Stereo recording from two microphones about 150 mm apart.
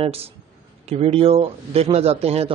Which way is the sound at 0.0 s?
40° right (ahead or behind).